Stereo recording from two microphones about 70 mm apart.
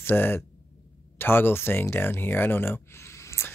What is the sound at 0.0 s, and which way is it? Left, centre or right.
Speech, left.